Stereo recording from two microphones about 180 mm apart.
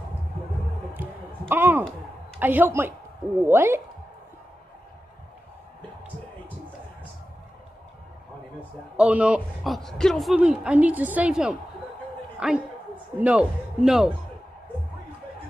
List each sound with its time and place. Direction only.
1.5 s a man's voice: 10° right (ahead or behind)
8.9 s a woman's voice: 5° right (ahead or behind)